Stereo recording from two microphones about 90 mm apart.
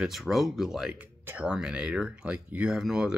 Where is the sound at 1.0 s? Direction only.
15° right (ahead or behind).